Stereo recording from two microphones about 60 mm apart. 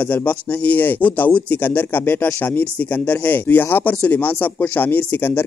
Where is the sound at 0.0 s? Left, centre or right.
Left.